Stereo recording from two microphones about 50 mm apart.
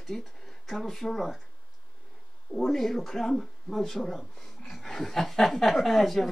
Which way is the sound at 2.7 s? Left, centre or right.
Centre.